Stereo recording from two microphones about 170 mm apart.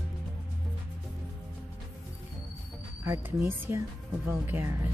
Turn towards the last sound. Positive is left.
turn(degrees=-15)  # may be behind; listen again after turning